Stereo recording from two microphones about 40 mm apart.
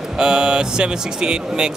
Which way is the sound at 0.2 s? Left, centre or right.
Centre.